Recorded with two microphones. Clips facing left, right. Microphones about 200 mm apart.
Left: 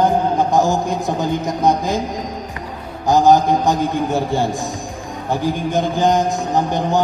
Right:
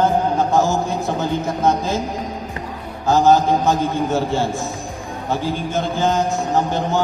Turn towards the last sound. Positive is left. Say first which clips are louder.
# left 1 dB
turn(degrees=15)  # may be behind; listen again after turning